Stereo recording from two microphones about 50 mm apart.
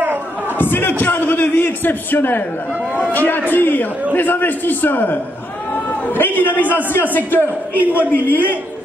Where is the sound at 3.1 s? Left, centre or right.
Left.